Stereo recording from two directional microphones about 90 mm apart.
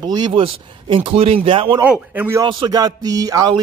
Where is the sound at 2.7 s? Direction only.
45° right (ahead or behind).